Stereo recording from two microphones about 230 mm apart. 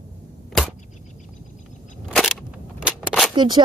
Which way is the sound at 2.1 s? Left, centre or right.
Centre.